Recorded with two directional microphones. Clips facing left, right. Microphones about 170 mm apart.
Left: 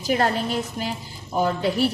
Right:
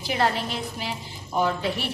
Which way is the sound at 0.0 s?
45° left (ahead or behind).